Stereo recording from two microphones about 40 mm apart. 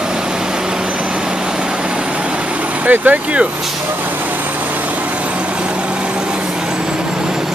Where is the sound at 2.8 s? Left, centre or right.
Right.